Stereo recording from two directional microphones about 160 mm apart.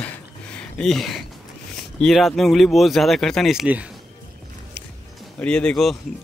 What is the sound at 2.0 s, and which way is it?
Speech, centre (ahead or behind).